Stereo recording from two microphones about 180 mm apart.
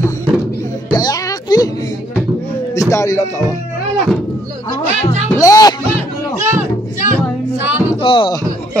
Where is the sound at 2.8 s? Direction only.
15° left (ahead or behind).